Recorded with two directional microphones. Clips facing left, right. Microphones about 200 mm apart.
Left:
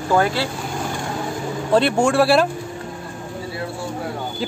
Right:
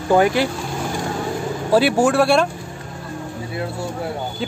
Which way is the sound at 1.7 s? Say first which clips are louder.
Right 1 dB; 5° right (ahead or behind).